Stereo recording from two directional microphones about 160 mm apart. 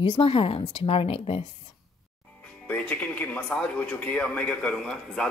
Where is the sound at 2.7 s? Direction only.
10° left (ahead or behind).